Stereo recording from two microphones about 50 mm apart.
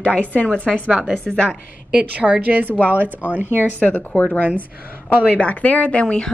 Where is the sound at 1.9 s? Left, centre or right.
Right.